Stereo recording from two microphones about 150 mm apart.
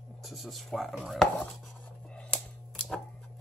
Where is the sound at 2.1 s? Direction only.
5° left (ahead or behind).